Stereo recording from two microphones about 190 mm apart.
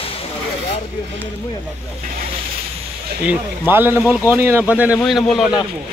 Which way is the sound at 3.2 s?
10° right (ahead or behind).